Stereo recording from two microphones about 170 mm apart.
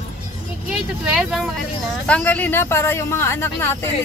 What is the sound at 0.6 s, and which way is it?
Speech, centre (ahead or behind).